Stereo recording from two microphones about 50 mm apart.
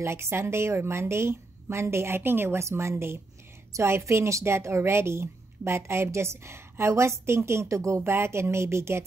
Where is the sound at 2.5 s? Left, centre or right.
Right.